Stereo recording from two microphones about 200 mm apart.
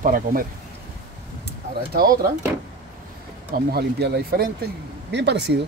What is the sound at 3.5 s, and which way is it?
Speech, 50° right (ahead or behind).